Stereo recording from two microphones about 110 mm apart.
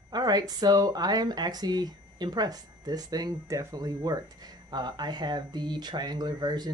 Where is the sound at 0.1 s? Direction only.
40° right (ahead or behind).